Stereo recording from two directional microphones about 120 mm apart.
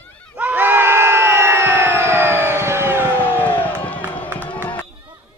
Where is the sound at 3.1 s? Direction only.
15° left (ahead or behind).